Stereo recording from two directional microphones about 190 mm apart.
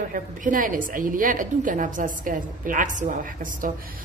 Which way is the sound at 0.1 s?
45° right (ahead or behind).